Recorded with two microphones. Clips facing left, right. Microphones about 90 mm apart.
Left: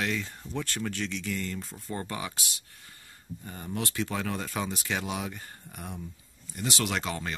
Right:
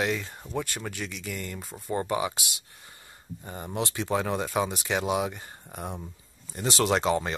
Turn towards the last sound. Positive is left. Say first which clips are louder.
# right 7 dB
turn(degrees=-25)  # may be behind; listen again after turning